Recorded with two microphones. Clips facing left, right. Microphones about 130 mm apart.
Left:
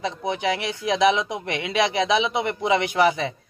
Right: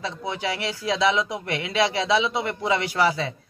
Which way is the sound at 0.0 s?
20° left (ahead or behind).